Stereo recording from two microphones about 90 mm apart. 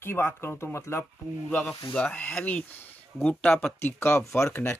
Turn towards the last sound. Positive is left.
turn(degrees=30)  # may be behind; listen again after turning